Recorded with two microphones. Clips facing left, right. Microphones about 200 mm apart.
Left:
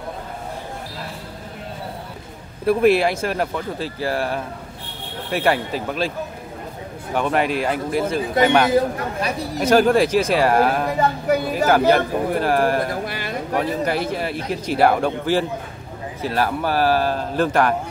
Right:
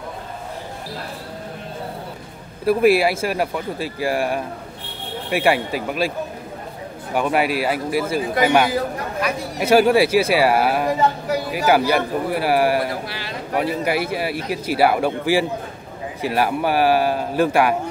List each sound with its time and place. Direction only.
2.6 s a man's voice: 5° right (ahead or behind)
7.2 s a man's voice: 10° right (ahead or behind)
11.0 s speech: 55° left (ahead or behind)
11.5 s a man's voice: 10° right (ahead or behind)
13.0 s speech: 50° left (ahead or behind)
13.6 s a man's voice: 10° right (ahead or behind)